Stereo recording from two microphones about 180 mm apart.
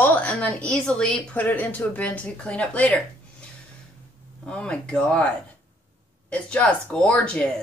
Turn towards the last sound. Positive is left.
turn(degrees=5)  # may be behind; listen again after turning